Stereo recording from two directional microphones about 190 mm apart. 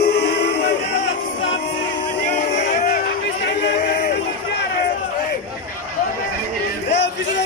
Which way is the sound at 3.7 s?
45° left (ahead or behind).